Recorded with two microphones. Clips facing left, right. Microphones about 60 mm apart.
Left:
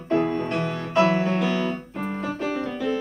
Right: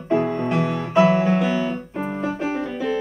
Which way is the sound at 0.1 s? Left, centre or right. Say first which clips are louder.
Right 2 dB; centre.